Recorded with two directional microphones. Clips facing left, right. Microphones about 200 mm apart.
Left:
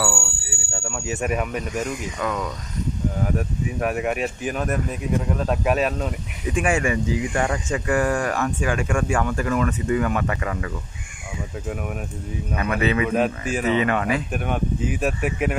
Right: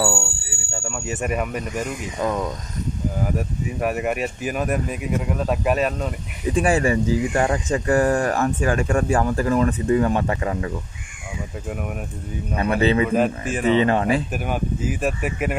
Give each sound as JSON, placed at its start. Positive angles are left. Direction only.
{"t": 0.0, "sound": "a sound", "side_deg": -30}
{"t": 0.7, "sound": "speech", "side_deg": 0}
{"t": 2.1, "sound": "speech", "side_deg": -30}
{"t": 3.3, "sound": "speech", "side_deg": 0}
{"t": 6.5, "sound": "speech", "side_deg": -35}
{"t": 12.5, "sound": "speech", "side_deg": -30}
{"t": 13.1, "sound": "speech", "side_deg": 0}
{"t": 13.7, "sound": "speech", "side_deg": -30}
{"t": 14.3, "sound": "speech", "side_deg": -5}